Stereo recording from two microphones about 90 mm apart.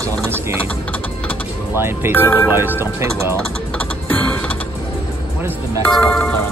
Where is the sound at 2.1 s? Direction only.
25° left (ahead or behind).